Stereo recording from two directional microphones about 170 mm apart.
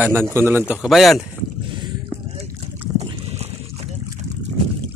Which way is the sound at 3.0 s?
35° right (ahead or behind).